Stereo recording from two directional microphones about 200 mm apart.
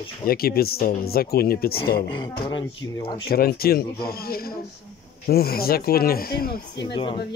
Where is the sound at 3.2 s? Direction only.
50° left (ahead or behind).